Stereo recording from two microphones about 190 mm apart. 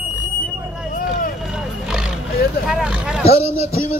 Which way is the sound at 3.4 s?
30° left (ahead or behind).